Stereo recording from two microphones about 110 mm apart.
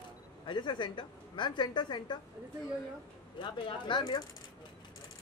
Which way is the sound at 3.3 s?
45° left (ahead or behind).